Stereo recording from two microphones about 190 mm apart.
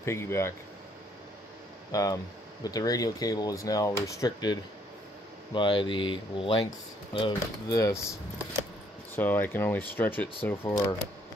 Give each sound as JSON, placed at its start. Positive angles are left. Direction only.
{"t": 0.0, "sound": "speech", "side_deg": 15}
{"t": 1.9, "sound": "speech", "side_deg": 20}